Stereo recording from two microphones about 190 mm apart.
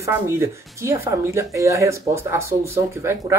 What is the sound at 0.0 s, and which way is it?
Speech, 15° right (ahead or behind).